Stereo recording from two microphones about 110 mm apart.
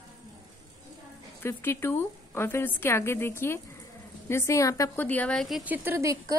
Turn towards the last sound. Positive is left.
turn(degrees=-20)  # may be behind; listen again after turning